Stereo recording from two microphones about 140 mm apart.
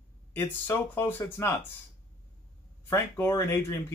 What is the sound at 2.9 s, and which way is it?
Speech, 20° left (ahead or behind).